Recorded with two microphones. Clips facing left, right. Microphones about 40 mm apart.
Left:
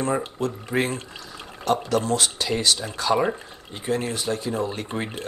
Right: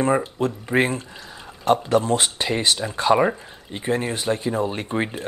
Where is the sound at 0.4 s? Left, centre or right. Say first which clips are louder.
Right 4 dB; right.